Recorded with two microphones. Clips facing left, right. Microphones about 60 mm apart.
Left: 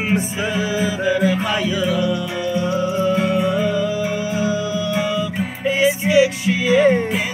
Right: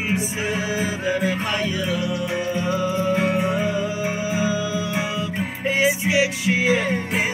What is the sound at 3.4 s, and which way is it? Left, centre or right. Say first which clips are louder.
Music: left 3 dB; centre.